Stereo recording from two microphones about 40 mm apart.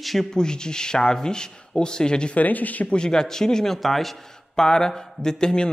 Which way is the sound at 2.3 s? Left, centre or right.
Left.